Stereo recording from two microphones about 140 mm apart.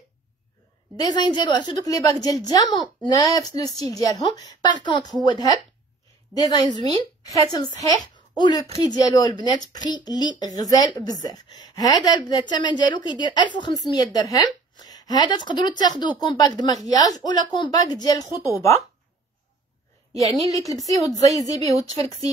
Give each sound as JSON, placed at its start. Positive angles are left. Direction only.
{"t": 0.9, "sound": "a woman's voice", "side_deg": 30}
{"t": 20.4, "sound": "a woman's voice", "side_deg": 25}